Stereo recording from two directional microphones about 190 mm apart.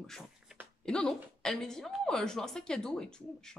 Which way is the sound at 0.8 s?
5° left (ahead or behind).